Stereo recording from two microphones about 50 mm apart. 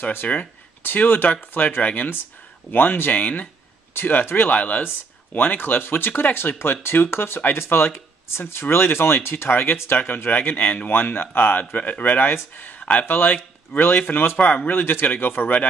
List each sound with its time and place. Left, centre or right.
0.3 s speech: left
14.4 s speech: left
14.7 s speech: left